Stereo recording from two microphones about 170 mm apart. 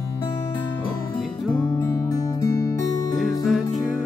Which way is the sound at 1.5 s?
25° left (ahead or behind).